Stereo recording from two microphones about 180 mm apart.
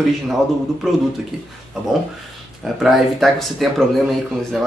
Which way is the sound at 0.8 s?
Centre (ahead or behind).